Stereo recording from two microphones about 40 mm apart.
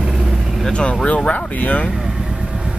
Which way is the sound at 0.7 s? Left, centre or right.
Left.